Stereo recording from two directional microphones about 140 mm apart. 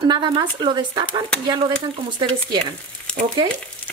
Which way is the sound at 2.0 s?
35° right (ahead or behind).